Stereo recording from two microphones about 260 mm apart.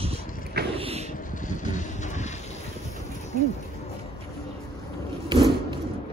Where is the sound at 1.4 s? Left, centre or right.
Left.